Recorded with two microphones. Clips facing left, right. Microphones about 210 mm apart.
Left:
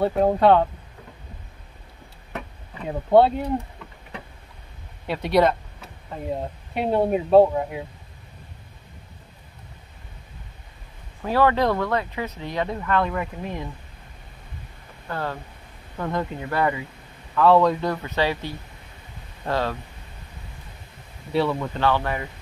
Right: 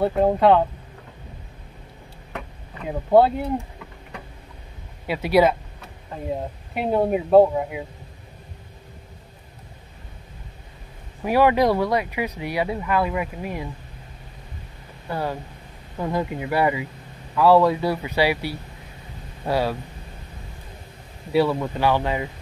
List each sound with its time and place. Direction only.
0.0 s speech: centre (ahead or behind)
2.3 s a sound: centre (ahead or behind)
5.0 s speech: 5° right (ahead or behind)
11.2 s speech: 15° right (ahead or behind)
15.0 s speech: 10° right (ahead or behind)
21.3 s speech: 5° right (ahead or behind)